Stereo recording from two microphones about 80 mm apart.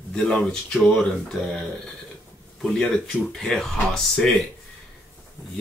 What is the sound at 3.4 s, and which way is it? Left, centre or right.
Speech, centre.